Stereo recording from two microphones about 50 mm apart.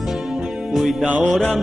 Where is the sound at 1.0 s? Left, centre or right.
Right.